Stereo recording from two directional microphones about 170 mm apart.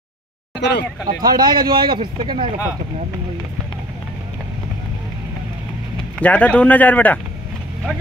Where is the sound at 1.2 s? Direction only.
25° right (ahead or behind).